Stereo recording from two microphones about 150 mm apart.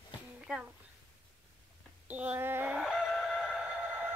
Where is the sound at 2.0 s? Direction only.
10° right (ahead or behind).